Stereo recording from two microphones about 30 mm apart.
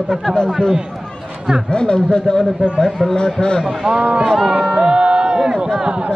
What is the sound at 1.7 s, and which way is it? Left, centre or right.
Speech, left.